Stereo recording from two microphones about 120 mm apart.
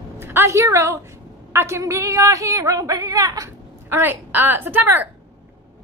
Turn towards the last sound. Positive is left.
turn(degrees=-15)  # may be behind; listen again after turning